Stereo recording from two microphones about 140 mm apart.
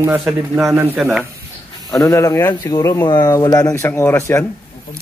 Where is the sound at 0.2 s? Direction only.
Centre (ahead or behind).